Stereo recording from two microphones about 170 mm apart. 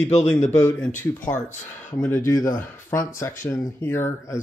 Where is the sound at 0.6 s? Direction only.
10° left (ahead or behind).